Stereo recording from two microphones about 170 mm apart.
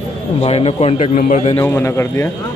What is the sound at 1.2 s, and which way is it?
Speech, 50° left (ahead or behind).